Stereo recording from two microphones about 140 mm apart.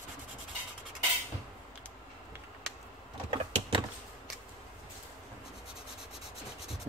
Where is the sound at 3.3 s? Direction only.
35° right (ahead or behind).